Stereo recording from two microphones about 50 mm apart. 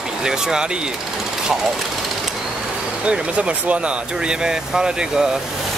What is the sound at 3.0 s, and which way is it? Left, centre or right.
Speech, right.